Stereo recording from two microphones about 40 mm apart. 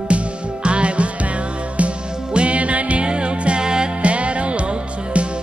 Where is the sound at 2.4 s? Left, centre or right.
Right.